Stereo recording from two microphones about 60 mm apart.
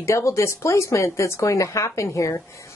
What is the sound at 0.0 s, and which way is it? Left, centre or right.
Speech, left.